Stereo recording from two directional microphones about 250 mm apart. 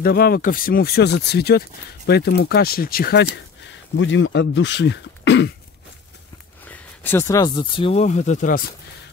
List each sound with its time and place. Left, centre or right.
0.0 s speech: left
6.7 s speech: centre; by 8.6 s left